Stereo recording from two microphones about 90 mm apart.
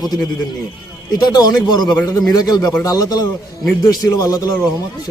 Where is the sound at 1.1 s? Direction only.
50° left (ahead or behind).